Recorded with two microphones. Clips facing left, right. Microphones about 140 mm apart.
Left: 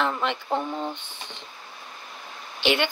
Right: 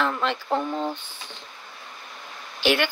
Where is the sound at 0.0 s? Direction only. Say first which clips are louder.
Right 1 dB; 15° left (ahead or behind).